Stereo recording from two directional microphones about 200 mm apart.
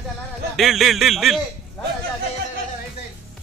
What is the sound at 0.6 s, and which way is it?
Speech, centre (ahead or behind).